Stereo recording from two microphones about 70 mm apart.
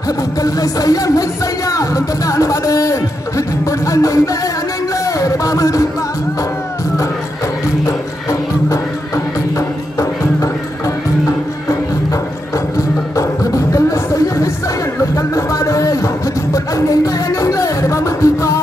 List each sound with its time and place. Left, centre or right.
0.4 s speech: left
5.0 s a sound: left
7.8 s music: left
12.7 s music: left